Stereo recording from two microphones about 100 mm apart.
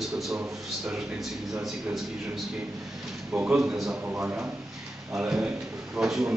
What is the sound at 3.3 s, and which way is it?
Speech, 15° right (ahead or behind).